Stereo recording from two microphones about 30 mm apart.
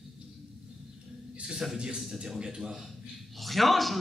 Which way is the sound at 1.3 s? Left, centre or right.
Right.